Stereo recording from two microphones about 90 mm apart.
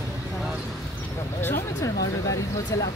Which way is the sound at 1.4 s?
25° left (ahead or behind).